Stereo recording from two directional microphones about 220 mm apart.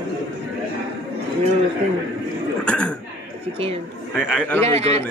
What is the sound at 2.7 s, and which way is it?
Speech, 5° left (ahead or behind).